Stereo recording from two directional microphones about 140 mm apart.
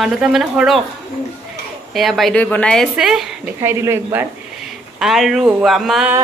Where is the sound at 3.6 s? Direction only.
20° right (ahead or behind).